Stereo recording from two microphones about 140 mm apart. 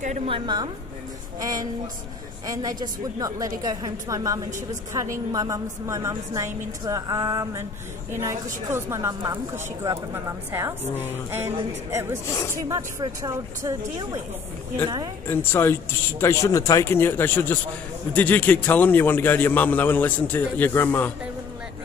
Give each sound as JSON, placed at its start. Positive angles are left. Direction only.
{"t": 0.3, "sound": "a woman's voice", "side_deg": -30}
{"t": 15.2, "sound": "a man's voice", "side_deg": 15}